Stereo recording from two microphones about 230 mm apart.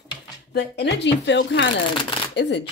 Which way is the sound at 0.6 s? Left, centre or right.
Left.